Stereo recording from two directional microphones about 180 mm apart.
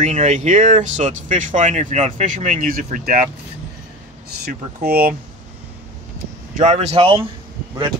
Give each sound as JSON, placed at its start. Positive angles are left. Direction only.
{"t": 0.0, "sound": "speech", "side_deg": -40}
{"t": 4.5, "sound": "speech", "side_deg": -60}
{"t": 6.5, "sound": "speech", "side_deg": -40}